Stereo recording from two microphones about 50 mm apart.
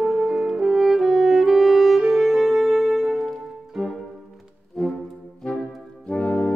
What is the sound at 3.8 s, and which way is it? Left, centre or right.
Music, centre.